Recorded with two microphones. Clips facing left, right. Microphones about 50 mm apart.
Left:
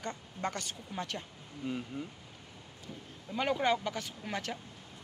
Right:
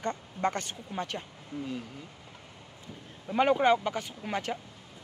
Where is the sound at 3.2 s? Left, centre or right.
Right.